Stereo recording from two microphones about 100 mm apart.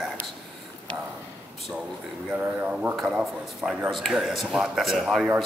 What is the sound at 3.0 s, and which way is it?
Speech, 5° right (ahead or behind).